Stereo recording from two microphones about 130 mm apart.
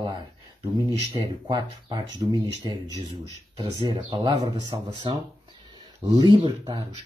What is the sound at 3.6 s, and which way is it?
Speech, 40° right (ahead or behind).